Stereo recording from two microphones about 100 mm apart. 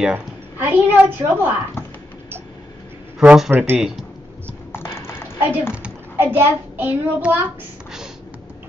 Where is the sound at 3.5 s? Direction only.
20° right (ahead or behind).